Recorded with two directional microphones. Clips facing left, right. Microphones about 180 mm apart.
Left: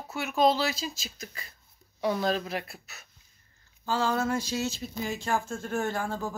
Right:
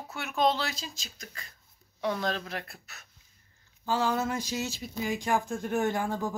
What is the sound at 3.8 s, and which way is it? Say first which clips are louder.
Speech: left 1 dB; 15° right (ahead or behind).